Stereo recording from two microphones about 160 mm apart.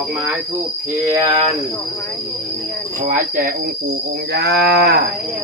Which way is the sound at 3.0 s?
55° right (ahead or behind).